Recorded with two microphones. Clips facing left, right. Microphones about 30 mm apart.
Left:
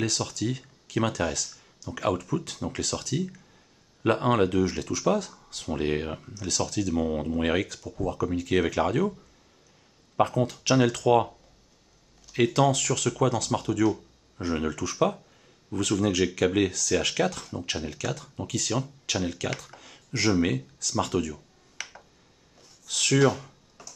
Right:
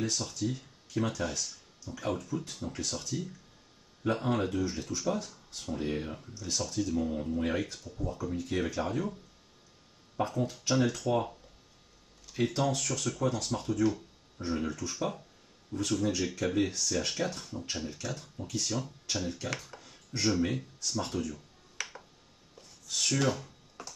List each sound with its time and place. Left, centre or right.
0.0 s speech: left
2.0 s speech: left
7.3 s speech: left
10.1 s speech: left
12.5 s speech: left
18.3 s speech: left
19.8 s a sound: left
20.8 s speech: left
21.8 s a sound: centre
22.8 s speech: left
23.1 s speech: left